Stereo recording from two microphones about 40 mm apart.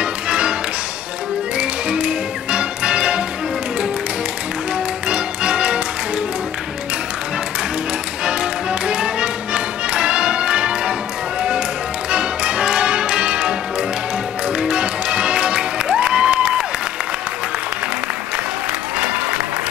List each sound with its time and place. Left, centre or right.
0.0 s music: right
1.6 s music: right
5.0 s music: right
8.3 s music: right
12.1 s music: right
18.9 s applause: right